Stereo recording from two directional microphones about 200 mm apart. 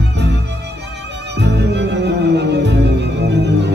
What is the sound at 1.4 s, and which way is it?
Music, 60° right (ahead or behind).